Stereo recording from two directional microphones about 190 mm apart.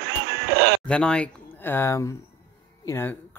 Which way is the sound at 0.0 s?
60° right (ahead or behind).